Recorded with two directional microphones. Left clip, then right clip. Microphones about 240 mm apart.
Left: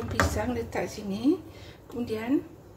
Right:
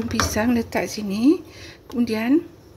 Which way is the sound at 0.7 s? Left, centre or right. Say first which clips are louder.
Right 7 dB; right.